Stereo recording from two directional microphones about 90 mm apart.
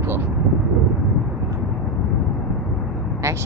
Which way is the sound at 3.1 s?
35° right (ahead or behind).